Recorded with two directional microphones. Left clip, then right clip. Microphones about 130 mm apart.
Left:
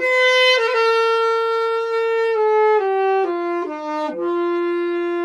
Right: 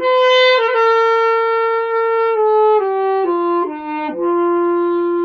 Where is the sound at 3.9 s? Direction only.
45° left (ahead or behind).